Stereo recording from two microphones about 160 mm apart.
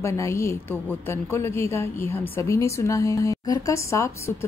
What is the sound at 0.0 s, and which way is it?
A woman's voice, 20° left (ahead or behind).